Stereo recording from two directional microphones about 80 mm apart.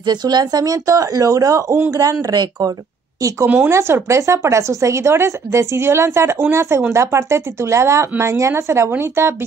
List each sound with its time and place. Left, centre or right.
0.0 s speech: right
3.2 s a woman's voice: right
3.4 s speech: centre
3.7 s speech: right